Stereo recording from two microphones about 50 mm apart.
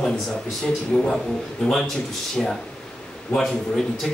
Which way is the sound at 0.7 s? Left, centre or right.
Centre.